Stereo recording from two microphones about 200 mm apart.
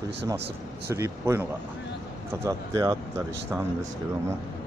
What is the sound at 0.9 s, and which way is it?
Speech, 15° right (ahead or behind).